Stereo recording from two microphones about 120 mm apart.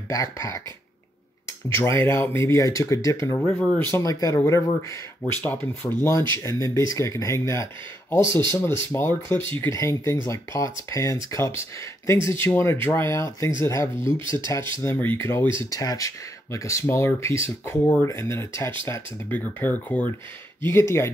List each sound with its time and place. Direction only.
0.1 s speech: 25° left (ahead or behind)
1.7 s speech: 20° left (ahead or behind)
3.4 s speech: 5° left (ahead or behind)
3.9 s speech: 25° left (ahead or behind)
5.3 s speech: 15° left (ahead or behind)